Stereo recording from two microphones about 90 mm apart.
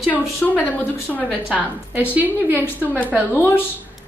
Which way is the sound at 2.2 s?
20° right (ahead or behind).